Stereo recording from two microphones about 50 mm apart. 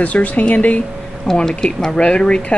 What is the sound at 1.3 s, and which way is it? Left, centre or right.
Speech, centre.